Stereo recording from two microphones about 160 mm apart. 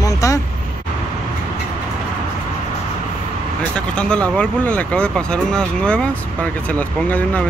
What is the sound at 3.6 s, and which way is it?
Speech, 5° left (ahead or behind).